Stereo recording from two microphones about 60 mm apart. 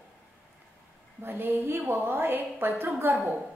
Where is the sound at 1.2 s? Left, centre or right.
Right.